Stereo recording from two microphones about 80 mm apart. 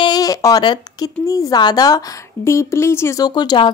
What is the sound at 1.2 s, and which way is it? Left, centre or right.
Speech, left.